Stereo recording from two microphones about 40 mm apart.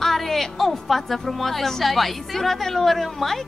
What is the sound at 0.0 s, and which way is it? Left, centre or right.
Speech, centre.